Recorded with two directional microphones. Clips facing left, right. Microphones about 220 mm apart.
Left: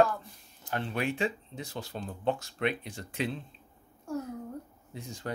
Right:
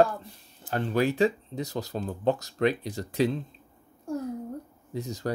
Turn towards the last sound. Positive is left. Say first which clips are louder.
# right 9 dB
turn(degrees=-40)  # may be behind; listen again after turning